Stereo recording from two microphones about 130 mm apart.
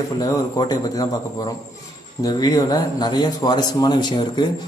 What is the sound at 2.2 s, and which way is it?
A man's voice, 30° left (ahead or behind).